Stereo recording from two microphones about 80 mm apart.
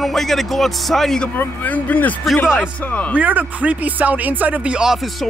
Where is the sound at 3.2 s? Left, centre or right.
Centre.